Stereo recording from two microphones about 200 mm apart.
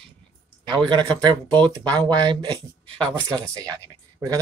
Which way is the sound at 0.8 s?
20° right (ahead or behind).